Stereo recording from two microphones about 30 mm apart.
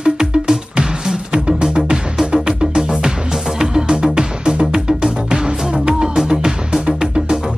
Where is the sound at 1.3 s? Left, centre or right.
Right.